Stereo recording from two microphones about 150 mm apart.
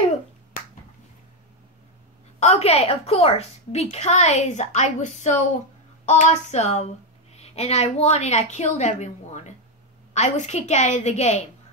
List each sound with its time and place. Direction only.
2.4 s a woman's voice: 45° left (ahead or behind)